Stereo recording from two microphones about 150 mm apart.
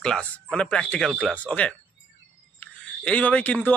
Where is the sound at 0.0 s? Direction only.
5° left (ahead or behind).